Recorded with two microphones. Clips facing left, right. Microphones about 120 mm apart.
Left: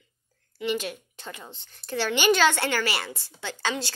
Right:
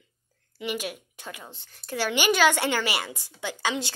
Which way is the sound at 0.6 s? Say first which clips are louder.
Left 3 dB; 10° right (ahead or behind).